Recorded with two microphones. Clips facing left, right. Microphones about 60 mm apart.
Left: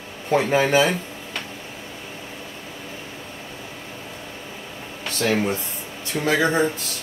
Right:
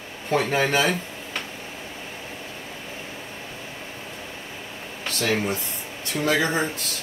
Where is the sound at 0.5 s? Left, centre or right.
Centre.